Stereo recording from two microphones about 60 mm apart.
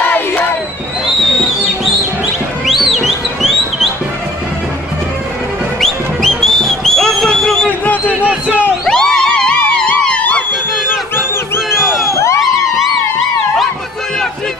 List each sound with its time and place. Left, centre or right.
2.6 s music: centre
5.8 s music: centre
7.8 s a sound: left
8.8 s music: centre
10.9 s music: left
11.8 s music: centre
12.1 s a sound: left
12.4 s music: centre